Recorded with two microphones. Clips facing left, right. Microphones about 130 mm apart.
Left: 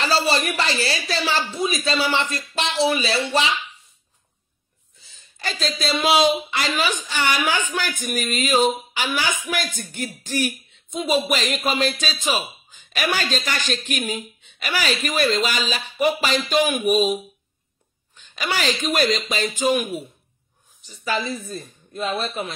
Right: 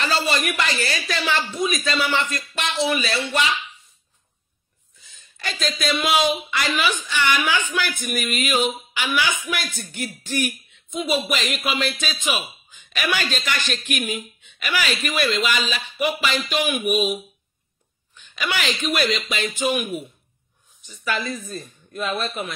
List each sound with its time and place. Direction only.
0.0 s speech: 35° left (ahead or behind)
5.4 s speech: 35° left (ahead or behind)
18.1 s wail: 40° left (ahead or behind)
18.8 s speech: 40° left (ahead or behind)